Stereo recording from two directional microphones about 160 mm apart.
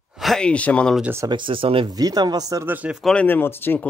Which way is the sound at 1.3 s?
30° right (ahead or behind).